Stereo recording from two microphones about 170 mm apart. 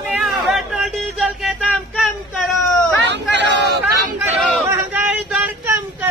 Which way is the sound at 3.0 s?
90° right.